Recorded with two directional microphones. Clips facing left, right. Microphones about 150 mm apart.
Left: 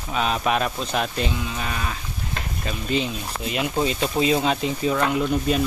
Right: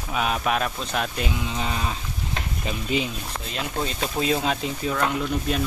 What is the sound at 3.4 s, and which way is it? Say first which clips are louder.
Speech: left 6 dB; 10° left (ahead or behind).